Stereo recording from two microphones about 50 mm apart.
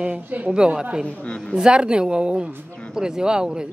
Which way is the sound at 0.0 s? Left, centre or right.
Right.